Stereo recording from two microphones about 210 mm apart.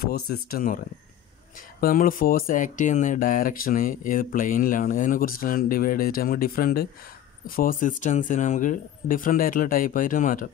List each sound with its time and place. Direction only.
0.0 s speech: 45° left (ahead or behind)
1.8 s speech: 45° left (ahead or behind)